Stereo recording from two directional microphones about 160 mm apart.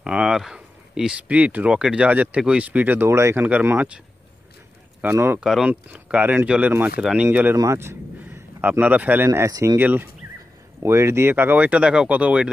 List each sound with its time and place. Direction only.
0.0 s speech: 5° right (ahead or behind)
5.0 s speech: 15° right (ahead or behind)
5.4 s speech: 5° right (ahead or behind)
7.2 s speech: 15° right (ahead or behind)